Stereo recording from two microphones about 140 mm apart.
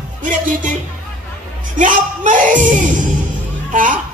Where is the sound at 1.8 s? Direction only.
70° right (ahead or behind).